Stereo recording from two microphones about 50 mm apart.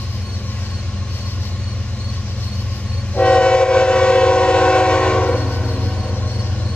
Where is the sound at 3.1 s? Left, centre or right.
Left.